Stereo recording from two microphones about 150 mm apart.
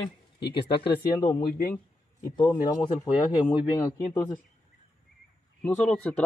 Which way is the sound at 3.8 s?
15° left (ahead or behind).